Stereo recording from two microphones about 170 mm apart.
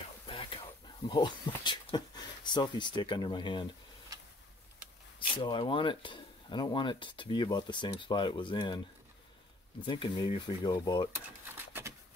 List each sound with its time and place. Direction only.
0.3 s a sound: 30° left (ahead or behind)
1.0 s speech: 25° left (ahead or behind)
4.1 s a sound: 20° right (ahead or behind)
5.4 s speech: 30° left (ahead or behind)
9.8 s speech: 30° left (ahead or behind)
11.4 s typewriter: 15° right (ahead or behind)